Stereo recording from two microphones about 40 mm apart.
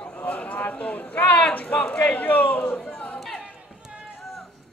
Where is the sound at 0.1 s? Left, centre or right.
Left.